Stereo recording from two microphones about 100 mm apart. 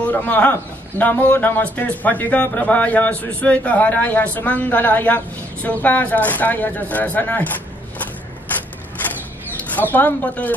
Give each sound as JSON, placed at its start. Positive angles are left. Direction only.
{"t": 0.0, "sound": "a man's voice", "side_deg": 15}
{"t": 9.7, "sound": "a man's voice", "side_deg": 15}